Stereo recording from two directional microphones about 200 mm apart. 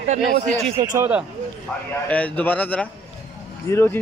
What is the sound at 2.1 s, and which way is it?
Speech, 5° left (ahead or behind).